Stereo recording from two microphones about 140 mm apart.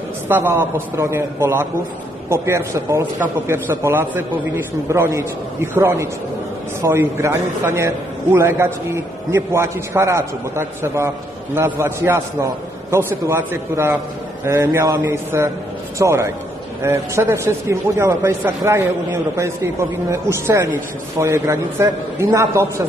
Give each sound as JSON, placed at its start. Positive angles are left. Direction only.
{"t": 0.3, "sound": "a man's voice", "side_deg": -15}